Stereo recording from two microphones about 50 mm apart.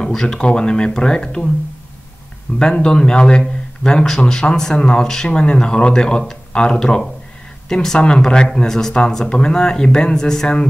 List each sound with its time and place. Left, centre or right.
0.0 s speech: centre
2.6 s speech: centre